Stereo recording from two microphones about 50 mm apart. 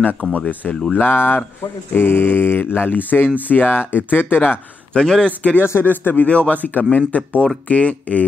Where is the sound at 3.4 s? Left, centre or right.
Left.